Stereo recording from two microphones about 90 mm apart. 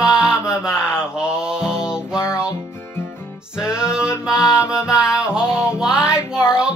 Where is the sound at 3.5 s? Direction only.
10° right (ahead or behind).